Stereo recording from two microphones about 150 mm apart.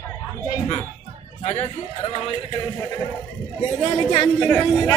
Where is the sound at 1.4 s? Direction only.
45° left (ahead or behind).